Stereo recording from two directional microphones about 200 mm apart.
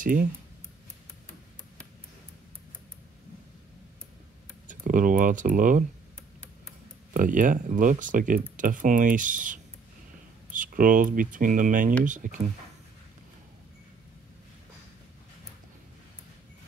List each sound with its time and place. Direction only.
0.0 s speech: 45° right (ahead or behind)
4.6 s speech: 40° right (ahead or behind)
7.2 s speech: 40° right (ahead or behind)